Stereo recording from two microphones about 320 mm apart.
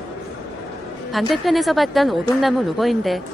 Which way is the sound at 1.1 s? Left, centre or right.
Centre.